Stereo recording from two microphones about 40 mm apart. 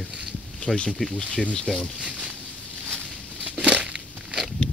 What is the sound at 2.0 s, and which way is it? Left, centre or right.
Speech, right.